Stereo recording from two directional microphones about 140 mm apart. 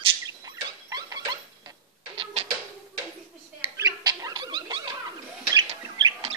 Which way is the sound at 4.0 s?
25° right (ahead or behind).